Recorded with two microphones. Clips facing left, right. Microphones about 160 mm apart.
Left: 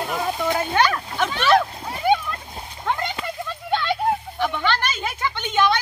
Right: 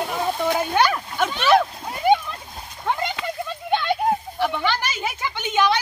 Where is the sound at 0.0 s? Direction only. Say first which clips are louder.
Right 1 dB; centre (ahead or behind).